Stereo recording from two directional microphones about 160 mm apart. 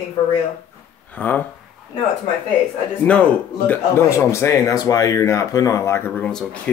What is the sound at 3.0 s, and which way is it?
A man's voice, 10° left (ahead or behind).